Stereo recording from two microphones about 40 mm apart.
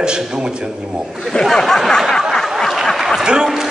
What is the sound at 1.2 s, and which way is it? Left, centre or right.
Speech, centre.